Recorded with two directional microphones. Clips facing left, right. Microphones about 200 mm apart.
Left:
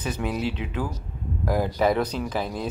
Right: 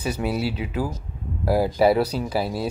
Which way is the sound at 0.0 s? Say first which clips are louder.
Right 2 dB; 10° right (ahead or behind).